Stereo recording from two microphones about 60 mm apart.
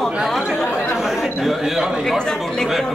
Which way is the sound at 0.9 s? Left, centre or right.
Centre.